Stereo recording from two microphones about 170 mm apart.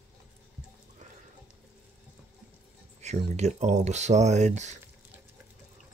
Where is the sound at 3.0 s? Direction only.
40° right (ahead or behind).